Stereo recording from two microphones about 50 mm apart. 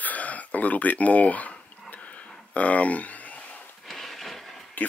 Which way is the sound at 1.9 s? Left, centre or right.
Left.